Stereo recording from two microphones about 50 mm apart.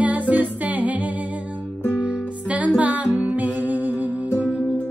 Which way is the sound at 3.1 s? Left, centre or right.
Right.